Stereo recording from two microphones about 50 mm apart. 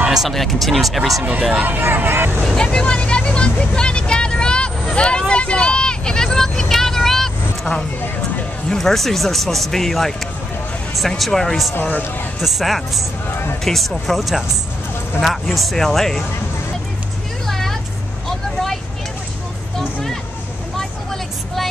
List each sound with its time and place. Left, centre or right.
0.3 s speech: centre
1.5 s speech: right
1.8 s speech: right
2.4 s speech: centre
5.3 s vehicle: centre
8.6 s speech: centre
11.8 s speech: left
12.4 s speech: centre
17.5 s vehicle: centre
20.7 s vehicle: centre